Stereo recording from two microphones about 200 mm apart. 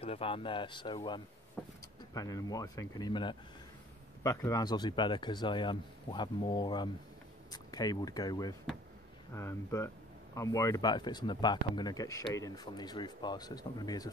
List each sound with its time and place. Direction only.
0.0 s speech: 30° left (ahead or behind)
1.6 s speech: 5° left (ahead or behind)
2.1 s speech: 20° left (ahead or behind)